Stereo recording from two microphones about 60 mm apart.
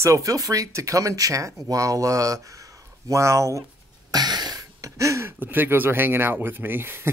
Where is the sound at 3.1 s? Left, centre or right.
Right.